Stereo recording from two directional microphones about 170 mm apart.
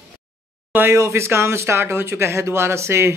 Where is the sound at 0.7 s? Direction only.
15° right (ahead or behind).